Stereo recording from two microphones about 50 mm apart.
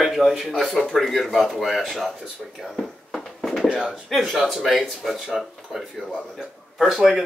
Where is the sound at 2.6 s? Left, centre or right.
Centre.